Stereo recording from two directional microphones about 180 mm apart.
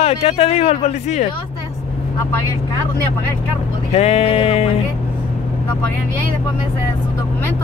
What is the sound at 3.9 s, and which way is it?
Speech, 35° left (ahead or behind).